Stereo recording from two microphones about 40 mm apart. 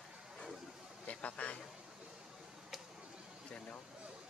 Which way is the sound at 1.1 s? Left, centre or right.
Left.